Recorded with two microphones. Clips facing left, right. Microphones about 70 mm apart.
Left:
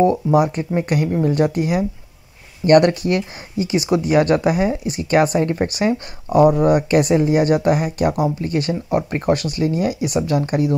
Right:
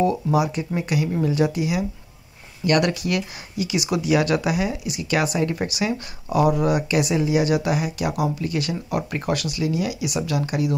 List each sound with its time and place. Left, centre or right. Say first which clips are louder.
0.0 s speech: left 5 dB; left